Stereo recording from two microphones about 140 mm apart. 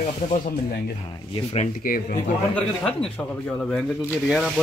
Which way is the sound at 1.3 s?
45° left (ahead or behind).